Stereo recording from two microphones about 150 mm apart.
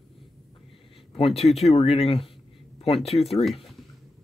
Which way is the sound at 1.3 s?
45° left (ahead or behind).